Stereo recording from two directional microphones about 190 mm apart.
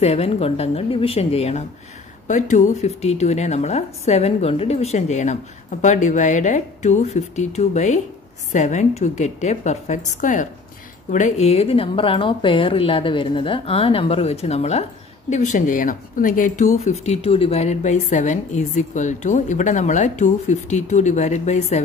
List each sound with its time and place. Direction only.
0.0 s speech: 30° left (ahead or behind)